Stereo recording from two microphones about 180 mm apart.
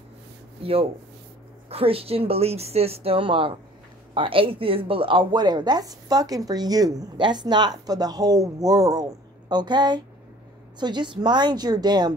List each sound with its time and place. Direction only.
1.7 s a woman's voice: 30° right (ahead or behind)